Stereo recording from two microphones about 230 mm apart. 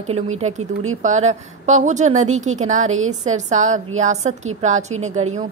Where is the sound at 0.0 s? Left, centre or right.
Right.